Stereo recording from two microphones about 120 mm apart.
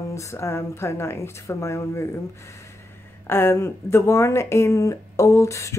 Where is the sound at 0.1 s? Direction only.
25° left (ahead or behind).